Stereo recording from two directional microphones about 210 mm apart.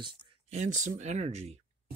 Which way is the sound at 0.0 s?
35° right (ahead or behind).